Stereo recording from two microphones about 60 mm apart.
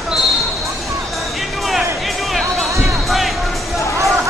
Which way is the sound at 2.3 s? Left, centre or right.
Centre.